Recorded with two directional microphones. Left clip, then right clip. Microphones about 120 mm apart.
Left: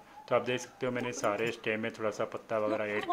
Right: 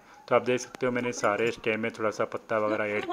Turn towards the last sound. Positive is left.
turn(degrees=-30)  # may be behind; listen again after turning